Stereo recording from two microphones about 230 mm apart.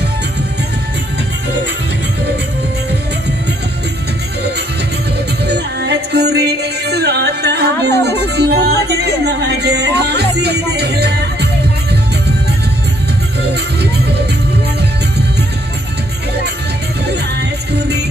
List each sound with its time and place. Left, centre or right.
5.5 s music: right
13.4 s music: right
17.1 s music: right